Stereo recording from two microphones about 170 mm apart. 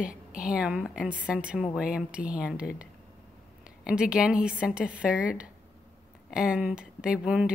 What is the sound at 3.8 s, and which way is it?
A woman's voice, 5° right (ahead or behind).